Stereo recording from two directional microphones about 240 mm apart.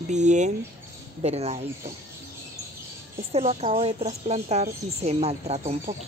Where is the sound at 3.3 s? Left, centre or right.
Right.